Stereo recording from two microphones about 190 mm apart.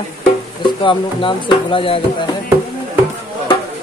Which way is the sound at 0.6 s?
25° left (ahead or behind).